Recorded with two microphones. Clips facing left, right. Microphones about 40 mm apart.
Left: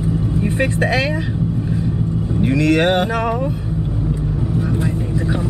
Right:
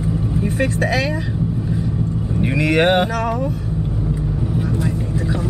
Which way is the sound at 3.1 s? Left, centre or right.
Centre.